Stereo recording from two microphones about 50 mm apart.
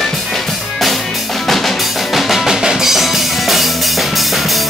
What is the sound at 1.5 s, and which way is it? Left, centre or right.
Drum, centre.